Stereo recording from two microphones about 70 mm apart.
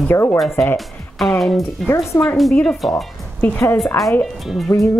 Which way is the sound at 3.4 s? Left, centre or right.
Left.